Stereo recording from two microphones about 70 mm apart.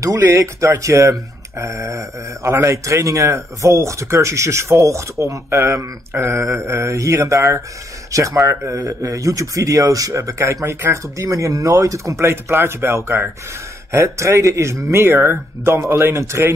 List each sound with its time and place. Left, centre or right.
0.2 s speech: right